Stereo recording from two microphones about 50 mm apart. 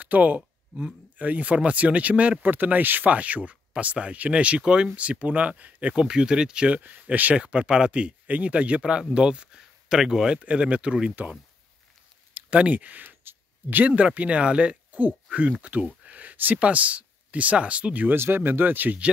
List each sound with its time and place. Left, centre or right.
0.0 s speech: right
5.9 s speech: centre
6.7 s speech: right
7.3 s speech: centre
12.4 s speech: right
15.6 s a sound: right
16.5 s speech: right
18.0 s speech: right